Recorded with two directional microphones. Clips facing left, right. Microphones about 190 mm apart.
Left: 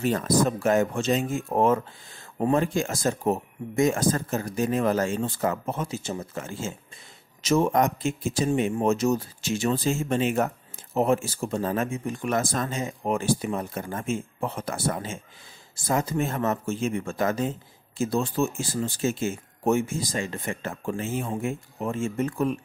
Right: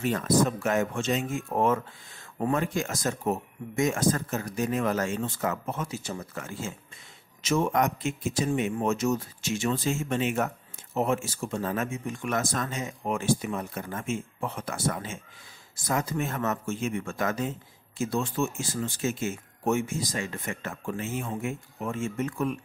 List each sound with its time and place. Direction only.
0.0 s speech: 35° left (ahead or behind)